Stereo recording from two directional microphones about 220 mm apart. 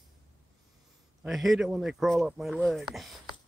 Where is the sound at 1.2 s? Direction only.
Centre (ahead or behind).